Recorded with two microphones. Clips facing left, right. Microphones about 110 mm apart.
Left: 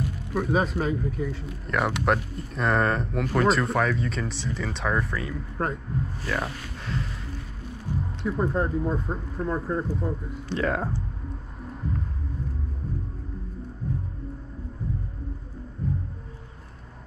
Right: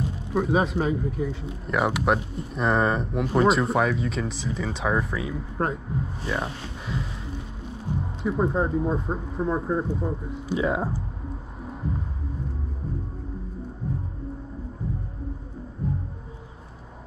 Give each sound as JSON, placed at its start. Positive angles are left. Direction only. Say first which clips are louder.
{"t": 0.4, "sound": "speech", "louder": "right 2 dB", "side_deg": -5}
{"t": 6.2, "sound": "speech", "louder": "right 1 dB", "side_deg": -15}
{"t": 6.9, "sound": "speech", "louder": "even", "side_deg": -5}
{"t": 8.2, "sound": "speech", "louder": "right 2 dB", "side_deg": -5}
{"t": 11.6, "sound": "heart sounds", "louder": "right 1 dB", "side_deg": -5}
{"t": 13.8, "sound": "music", "louder": "even", "side_deg": -5}
{"t": 15.8, "sound": "music", "louder": "right 1 dB", "side_deg": -5}